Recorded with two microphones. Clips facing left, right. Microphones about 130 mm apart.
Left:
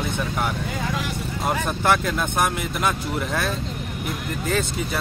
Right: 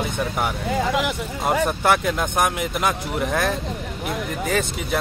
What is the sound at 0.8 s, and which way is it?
Speech, 75° right (ahead or behind).